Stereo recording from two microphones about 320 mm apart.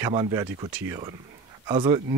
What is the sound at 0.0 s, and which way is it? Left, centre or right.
Speech, centre.